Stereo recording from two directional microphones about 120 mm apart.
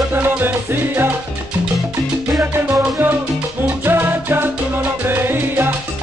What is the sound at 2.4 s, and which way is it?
Music, 20° right (ahead or behind).